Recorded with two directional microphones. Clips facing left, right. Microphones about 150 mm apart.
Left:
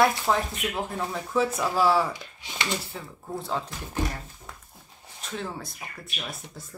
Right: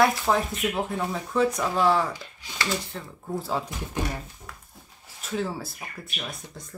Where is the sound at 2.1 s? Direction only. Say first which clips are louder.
Even; 20° left (ahead or behind).